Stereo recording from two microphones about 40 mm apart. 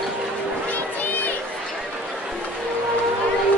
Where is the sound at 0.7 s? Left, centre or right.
Left.